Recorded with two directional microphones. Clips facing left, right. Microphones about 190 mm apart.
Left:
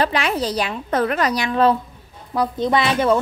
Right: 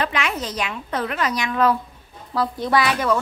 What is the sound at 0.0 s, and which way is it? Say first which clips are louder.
A woman's voice: left 4 dB; 35° left (ahead or behind).